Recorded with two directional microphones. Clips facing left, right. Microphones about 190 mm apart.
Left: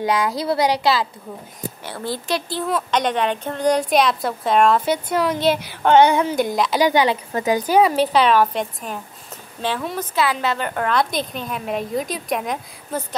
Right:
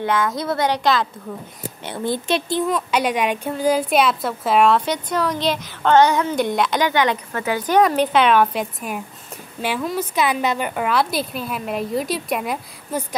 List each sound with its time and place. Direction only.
0.0 s a woman's voice: 15° left (ahead or behind)
0.3 s a woman's voice: 30° left (ahead or behind)
0.6 s a woman's voice: 10° left (ahead or behind)
1.9 s speech: 20° right (ahead or behind)
2.6 s a woman's voice: 5° right (ahead or behind); by 5.9 s 10° left (ahead or behind)
6.3 s a woman's voice: centre (ahead or behind)
6.8 s a woman's voice: 10° left (ahead or behind); by 13.0 s 5° right (ahead or behind)